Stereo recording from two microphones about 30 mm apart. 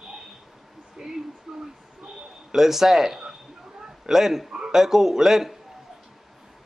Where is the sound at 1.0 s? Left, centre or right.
Centre.